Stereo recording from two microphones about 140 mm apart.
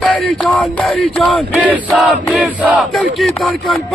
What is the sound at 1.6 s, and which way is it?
Battle cry, 10° right (ahead or behind).